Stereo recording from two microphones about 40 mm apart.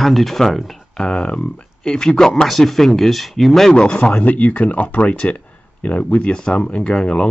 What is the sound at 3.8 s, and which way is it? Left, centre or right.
Speech, left.